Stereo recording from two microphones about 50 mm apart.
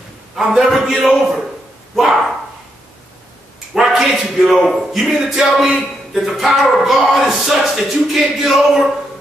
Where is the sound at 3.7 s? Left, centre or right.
Centre.